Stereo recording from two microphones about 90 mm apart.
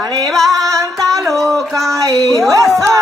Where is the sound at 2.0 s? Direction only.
40° right (ahead or behind).